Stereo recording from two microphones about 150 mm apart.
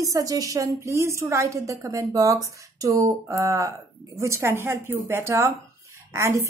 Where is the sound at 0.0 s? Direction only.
25° right (ahead or behind).